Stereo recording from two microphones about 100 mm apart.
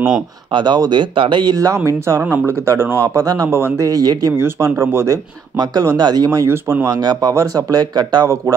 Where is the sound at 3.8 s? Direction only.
40° right (ahead or behind).